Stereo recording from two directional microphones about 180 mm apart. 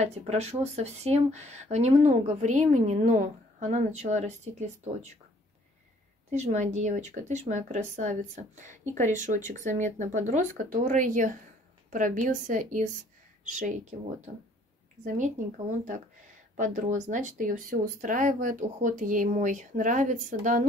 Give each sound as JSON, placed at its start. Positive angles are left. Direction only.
{"t": 0.0, "sound": "speech", "side_deg": -35}
{"t": 6.3, "sound": "speech", "side_deg": -40}